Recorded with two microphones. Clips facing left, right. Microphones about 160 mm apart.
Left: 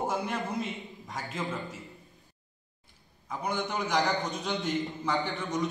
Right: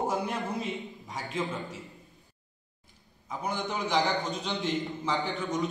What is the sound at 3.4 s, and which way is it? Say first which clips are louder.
A man's voice: even; centre (ahead or behind).